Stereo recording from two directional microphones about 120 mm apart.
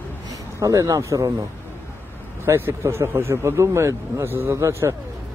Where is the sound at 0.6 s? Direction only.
25° right (ahead or behind).